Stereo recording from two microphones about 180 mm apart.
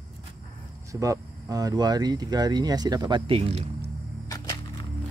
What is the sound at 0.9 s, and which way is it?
Speech, 20° right (ahead or behind).